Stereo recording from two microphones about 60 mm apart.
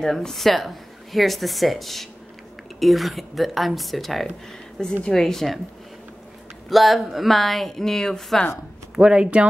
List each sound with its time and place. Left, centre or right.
0.0 s speech: centre
6.7 s speech: centre
8.9 s speech: centre